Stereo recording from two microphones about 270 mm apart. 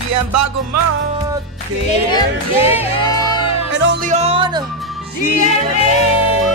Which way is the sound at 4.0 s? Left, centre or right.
Right.